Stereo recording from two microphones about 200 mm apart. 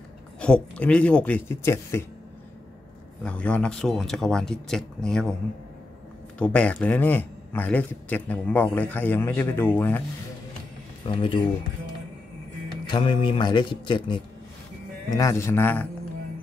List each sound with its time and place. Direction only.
0.4 s a man's voice: 5° left (ahead or behind)
3.3 s speech: 5° left (ahead or behind)
6.3 s a man's voice: 5° left (ahead or behind)
11.1 s a man's voice: 25° left (ahead or behind)
12.8 s a man's voice: 20° left (ahead or behind)